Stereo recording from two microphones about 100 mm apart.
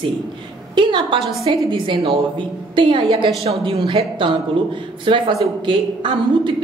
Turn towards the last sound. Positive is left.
turn(degrees=-55)  # may be behind; listen again after turning